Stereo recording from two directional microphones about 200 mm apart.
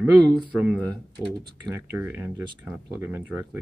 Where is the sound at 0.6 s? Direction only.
5° right (ahead or behind).